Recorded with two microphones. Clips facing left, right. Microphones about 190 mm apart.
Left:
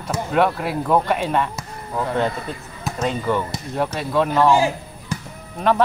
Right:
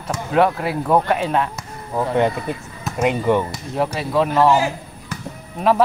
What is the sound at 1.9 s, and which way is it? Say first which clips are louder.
Fowl: right 3 dB; 15° right (ahead or behind).